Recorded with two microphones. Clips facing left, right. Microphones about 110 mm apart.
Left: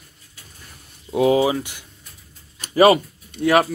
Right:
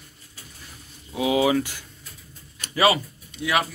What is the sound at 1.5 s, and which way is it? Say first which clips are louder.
Speech: right 3 dB; 20° left (ahead or behind).